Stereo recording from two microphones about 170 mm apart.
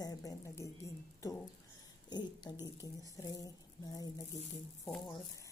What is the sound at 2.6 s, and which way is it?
Speech, 20° left (ahead or behind).